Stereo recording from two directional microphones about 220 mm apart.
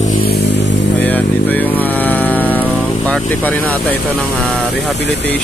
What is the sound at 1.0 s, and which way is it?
Vehicle, 10° left (ahead or behind).